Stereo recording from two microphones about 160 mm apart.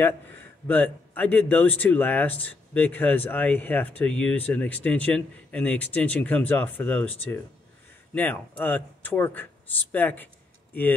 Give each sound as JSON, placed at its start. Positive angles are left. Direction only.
{"t": 0.7, "sound": "speech", "side_deg": 10}